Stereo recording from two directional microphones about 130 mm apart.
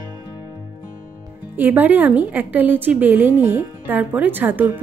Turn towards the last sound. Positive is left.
turn(degrees=-15)  # may be behind; listen again after turning